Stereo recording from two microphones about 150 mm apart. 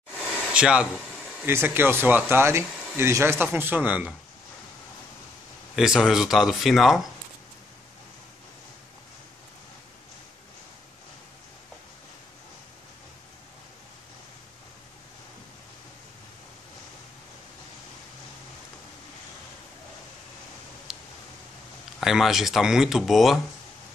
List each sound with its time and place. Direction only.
0.2 s a sound: 5° right (ahead or behind)
1.4 s speech: 15° right (ahead or behind)
5.8 s speech: 5° right (ahead or behind)
22.0 s speech: centre (ahead or behind)